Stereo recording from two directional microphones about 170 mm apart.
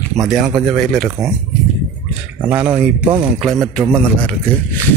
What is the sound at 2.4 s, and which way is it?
Speech, 10° right (ahead or behind).